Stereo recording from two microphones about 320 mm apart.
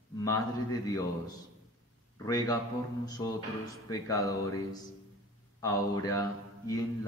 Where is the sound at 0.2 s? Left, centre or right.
Centre.